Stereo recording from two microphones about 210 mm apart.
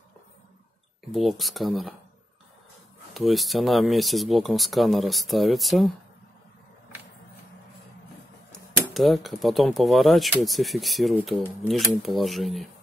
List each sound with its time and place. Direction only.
1.1 s speech: centre (ahead or behind)
3.2 s speech: centre (ahead or behind)
8.5 s speech: centre (ahead or behind)